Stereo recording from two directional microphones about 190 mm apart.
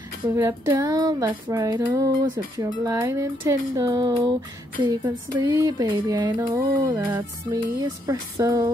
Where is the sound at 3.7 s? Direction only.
20° right (ahead or behind).